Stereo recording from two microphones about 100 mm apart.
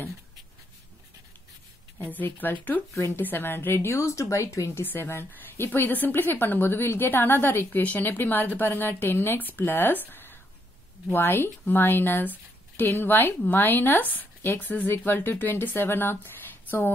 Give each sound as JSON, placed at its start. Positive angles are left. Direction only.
{"t": 2.0, "sound": "speech", "side_deg": 20}